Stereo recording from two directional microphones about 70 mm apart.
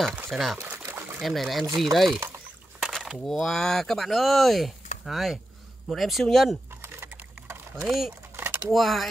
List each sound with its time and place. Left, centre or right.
0.3 s speech: centre
0.7 s a sound: right
1.2 s speech: centre
2.1 s pour: right
2.8 s a sound: centre
3.3 s speech: centre
6.7 s computer keyboard: right
8.4 s typing: right
8.7 s speech: centre